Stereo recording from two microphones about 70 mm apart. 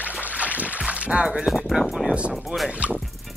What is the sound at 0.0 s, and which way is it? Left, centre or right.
Music, right.